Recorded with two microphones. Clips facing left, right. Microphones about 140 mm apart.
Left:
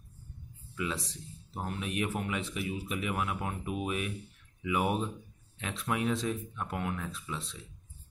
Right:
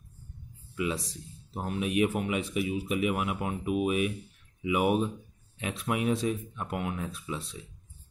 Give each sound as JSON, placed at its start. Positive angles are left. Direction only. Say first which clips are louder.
{"t": 0.7, "sound": "speech", "louder": "right 4 dB", "side_deg": -15}